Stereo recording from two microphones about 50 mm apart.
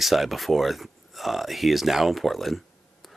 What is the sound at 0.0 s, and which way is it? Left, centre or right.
Speech, centre.